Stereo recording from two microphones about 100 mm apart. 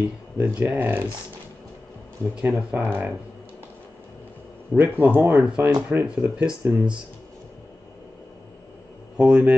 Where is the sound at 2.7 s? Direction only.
15° right (ahead or behind).